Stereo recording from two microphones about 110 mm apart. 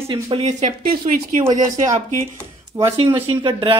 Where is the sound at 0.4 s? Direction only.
90° right.